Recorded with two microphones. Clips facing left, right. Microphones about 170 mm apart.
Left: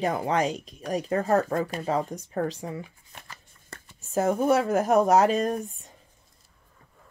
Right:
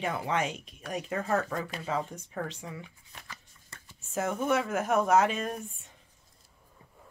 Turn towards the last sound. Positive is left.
turn(degrees=40)  # may be behind; listen again after turning